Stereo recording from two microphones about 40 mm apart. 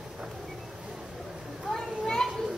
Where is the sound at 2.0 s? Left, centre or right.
Centre.